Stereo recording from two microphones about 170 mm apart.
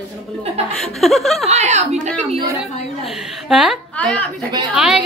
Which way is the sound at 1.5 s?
40° right (ahead or behind).